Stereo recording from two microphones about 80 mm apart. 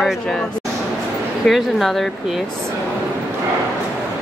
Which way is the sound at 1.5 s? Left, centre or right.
Centre.